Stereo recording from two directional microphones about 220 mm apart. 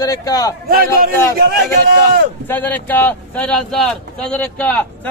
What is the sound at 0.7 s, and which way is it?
A man's voice, 40° right (ahead or behind).